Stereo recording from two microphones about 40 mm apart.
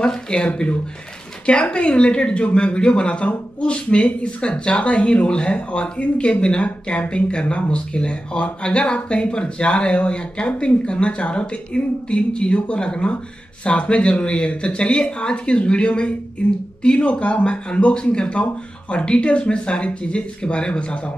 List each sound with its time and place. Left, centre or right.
0.0 s a woman's voice: left
0.5 s a woman's voice: left